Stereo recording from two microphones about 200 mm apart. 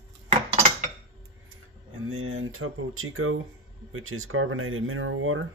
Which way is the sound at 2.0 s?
90° right.